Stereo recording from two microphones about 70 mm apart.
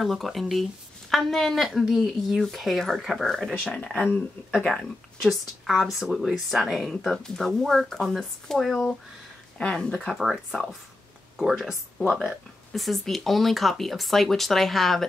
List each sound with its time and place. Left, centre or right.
0.0 s speech: centre
3.5 s speech: centre
4.6 s speech: centre
10.0 s speech: centre